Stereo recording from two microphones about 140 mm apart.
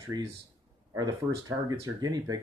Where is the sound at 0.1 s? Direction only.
25° right (ahead or behind).